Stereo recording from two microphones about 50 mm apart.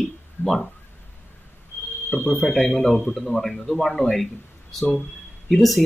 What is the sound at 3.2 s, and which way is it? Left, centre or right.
Speech, centre.